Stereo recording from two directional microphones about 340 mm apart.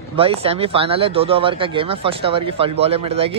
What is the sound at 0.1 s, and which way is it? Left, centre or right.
Speech, centre.